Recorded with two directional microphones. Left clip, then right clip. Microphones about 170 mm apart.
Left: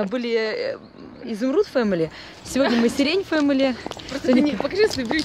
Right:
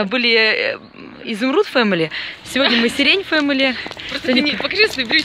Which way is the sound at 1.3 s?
25° right (ahead or behind).